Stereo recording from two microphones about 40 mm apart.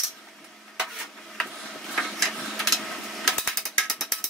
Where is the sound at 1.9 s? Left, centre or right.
Centre.